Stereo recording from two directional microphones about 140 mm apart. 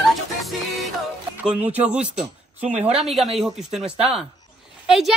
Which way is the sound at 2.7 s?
45° right (ahead or behind).